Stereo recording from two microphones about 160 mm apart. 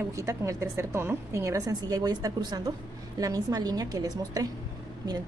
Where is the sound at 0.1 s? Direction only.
20° right (ahead or behind).